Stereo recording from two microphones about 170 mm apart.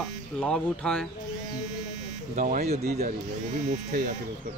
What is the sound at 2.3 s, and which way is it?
Speech, 50° right (ahead or behind).